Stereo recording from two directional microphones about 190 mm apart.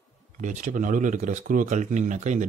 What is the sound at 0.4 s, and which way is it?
Speech, 40° right (ahead or behind).